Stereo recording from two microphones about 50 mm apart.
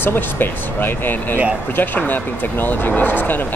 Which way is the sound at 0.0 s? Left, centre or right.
Left.